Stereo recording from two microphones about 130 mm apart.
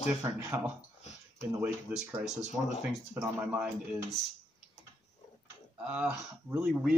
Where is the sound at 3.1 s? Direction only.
20° right (ahead or behind).